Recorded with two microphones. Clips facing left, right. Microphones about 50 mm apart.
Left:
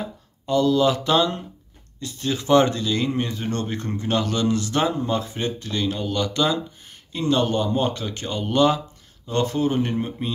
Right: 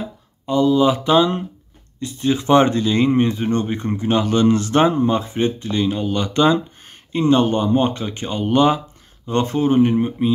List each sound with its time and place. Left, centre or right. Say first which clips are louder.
0.5 s speech: right 3 dB; centre